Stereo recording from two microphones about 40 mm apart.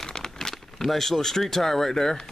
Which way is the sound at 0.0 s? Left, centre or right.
Centre.